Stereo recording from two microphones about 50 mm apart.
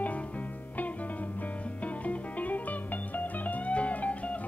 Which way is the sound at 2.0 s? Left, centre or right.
Left.